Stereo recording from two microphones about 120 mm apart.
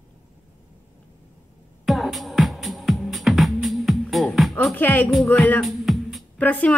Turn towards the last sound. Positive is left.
turn(degrees=15)  # may be behind; listen again after turning